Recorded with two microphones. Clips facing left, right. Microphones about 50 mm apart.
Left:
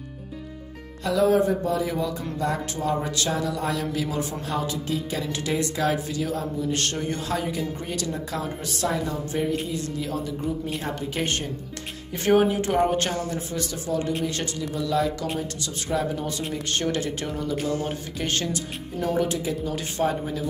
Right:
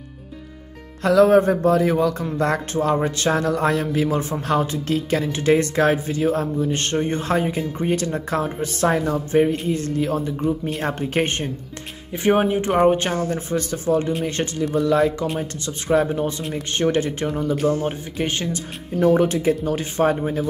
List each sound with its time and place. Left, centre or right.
1.2 s a man's voice: right
4.8 s a man's voice: right
5.3 s a man's voice: right
11.2 s speech: right
18.2 s speech: centre
18.9 s speech: right